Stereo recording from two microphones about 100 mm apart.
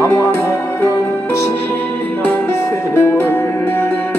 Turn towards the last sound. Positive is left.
turn(degrees=25)  # may be behind; listen again after turning